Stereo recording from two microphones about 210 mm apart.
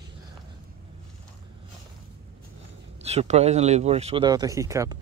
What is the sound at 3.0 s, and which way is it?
Speech, 30° right (ahead or behind).